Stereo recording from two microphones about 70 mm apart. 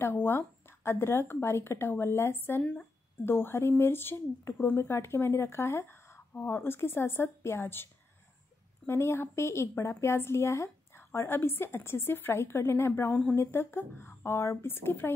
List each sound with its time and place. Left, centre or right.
0.0 s a woman's voice: left
13.1 s speech: left
13.4 s a woman's voice: left